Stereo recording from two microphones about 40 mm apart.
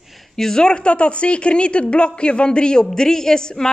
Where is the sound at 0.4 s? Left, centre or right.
Centre.